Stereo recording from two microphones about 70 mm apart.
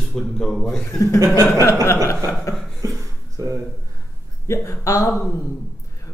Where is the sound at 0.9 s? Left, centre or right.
Left.